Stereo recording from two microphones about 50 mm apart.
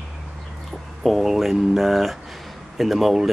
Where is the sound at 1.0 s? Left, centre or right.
Centre.